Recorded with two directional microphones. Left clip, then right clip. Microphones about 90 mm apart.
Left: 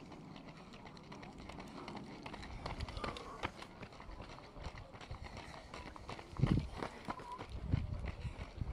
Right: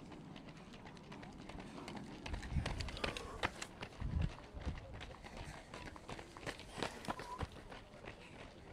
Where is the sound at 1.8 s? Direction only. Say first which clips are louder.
Left 1 dB; 15° right (ahead or behind).